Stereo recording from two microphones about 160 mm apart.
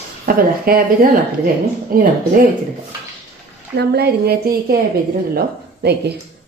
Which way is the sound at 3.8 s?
90° right.